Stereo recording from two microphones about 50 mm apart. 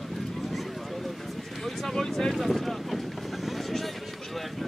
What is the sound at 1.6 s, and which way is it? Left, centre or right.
Boat, centre.